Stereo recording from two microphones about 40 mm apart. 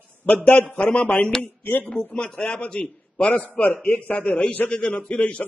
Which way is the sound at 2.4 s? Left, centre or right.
Left.